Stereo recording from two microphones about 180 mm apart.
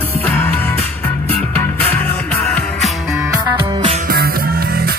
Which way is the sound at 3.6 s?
30° right (ahead or behind).